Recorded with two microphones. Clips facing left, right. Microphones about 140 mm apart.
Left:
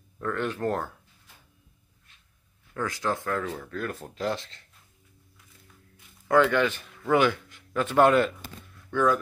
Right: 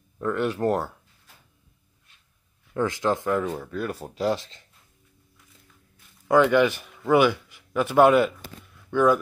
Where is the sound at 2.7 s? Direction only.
20° right (ahead or behind).